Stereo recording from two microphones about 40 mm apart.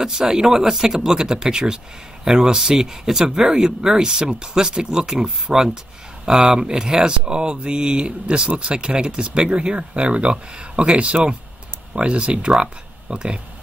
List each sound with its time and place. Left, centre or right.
0.0 s speech: centre